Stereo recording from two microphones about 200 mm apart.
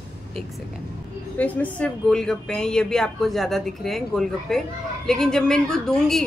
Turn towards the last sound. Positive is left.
turn(degrees=0)  # may be behind; listen again after turning